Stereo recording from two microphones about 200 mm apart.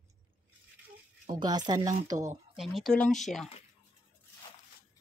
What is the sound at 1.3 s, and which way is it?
Speech, 20° right (ahead or behind).